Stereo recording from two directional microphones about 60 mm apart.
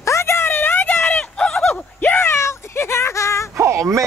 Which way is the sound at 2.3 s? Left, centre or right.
Left.